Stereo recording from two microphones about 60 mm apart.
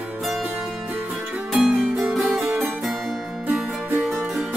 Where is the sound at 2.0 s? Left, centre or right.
Right.